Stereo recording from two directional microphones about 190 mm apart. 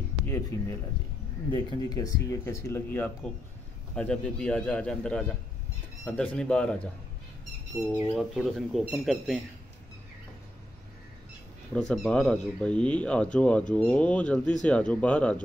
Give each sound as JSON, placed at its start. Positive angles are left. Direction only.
{"t": 0.2, "sound": "speech", "side_deg": 15}
{"t": 7.8, "sound": "speech", "side_deg": -5}
{"t": 11.7, "sound": "speech", "side_deg": 0}